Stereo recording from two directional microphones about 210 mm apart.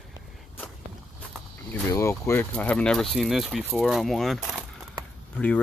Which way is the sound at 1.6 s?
15° left (ahead or behind).